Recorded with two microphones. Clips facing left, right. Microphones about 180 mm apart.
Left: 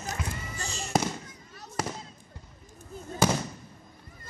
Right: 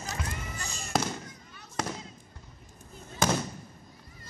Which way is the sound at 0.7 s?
55° right (ahead or behind).